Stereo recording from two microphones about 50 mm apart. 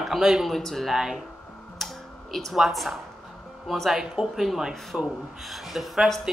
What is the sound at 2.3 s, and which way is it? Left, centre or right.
A woman's voice, centre.